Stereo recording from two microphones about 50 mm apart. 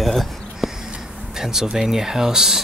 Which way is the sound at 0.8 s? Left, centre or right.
Centre.